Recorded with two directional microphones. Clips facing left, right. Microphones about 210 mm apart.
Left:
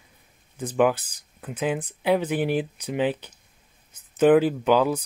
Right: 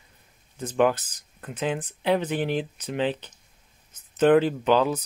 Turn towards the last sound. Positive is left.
turn(degrees=10)  # may be behind; listen again after turning